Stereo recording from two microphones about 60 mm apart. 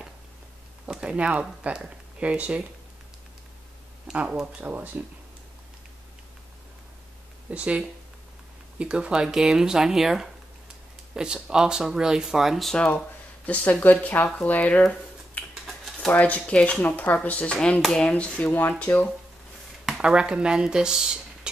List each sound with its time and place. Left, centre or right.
0.8 s speech: centre
4.3 s speech: centre
4.6 s speech: right
7.5 s speech: centre
13.5 s speech: left
15.6 s typing: centre
16.1 s speech: left
18.5 s speech: left
19.9 s speech: centre